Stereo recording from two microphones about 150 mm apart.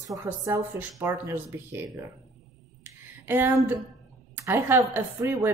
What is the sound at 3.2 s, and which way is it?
A woman's voice, 15° right (ahead or behind).